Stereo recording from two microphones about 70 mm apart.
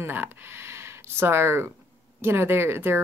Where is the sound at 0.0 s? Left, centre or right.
Right.